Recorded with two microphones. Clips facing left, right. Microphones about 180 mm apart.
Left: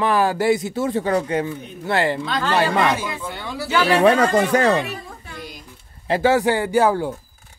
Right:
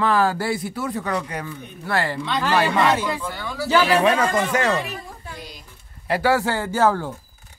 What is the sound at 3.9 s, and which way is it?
Speech, 35° left (ahead or behind).